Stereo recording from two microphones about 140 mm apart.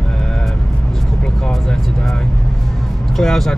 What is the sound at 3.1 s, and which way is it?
Speech, 5° left (ahead or behind).